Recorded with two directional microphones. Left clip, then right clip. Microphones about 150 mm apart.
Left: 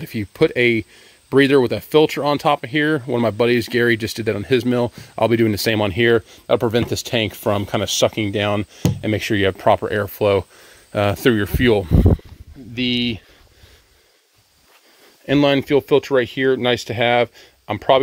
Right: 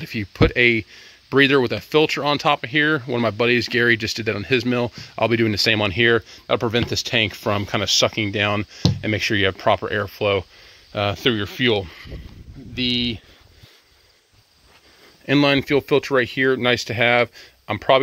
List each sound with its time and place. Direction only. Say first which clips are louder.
0.0 s speech: left 2 dB; 25° left (ahead or behind); by 10.4 s 40° left (ahead or behind)
10.9 s speech: left 4 dB; 50° left (ahead or behind)
12.7 s speech: left 1 dB; 60° left (ahead or behind)
15.2 s speech: left 1 dB; 25° left (ahead or behind)